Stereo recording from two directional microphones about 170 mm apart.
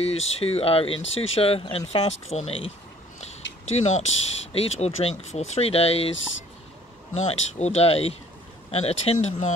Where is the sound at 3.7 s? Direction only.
40° left (ahead or behind).